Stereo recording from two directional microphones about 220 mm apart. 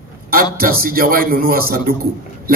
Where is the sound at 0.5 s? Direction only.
40° right (ahead or behind).